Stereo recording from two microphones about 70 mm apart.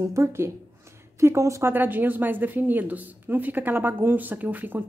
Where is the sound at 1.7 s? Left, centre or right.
Right.